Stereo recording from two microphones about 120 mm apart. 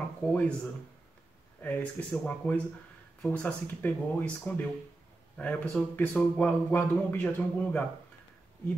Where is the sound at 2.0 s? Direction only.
15° left (ahead or behind).